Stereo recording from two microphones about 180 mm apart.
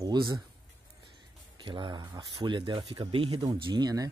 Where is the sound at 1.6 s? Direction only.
25° right (ahead or behind).